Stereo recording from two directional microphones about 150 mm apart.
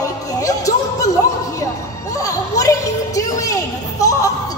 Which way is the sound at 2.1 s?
20° left (ahead or behind).